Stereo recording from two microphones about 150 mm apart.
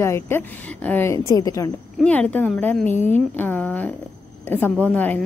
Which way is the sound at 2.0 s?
10° left (ahead or behind).